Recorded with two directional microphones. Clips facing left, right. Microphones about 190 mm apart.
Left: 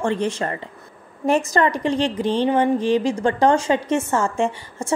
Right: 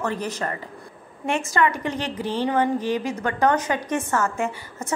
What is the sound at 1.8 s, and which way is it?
Speech, 10° right (ahead or behind).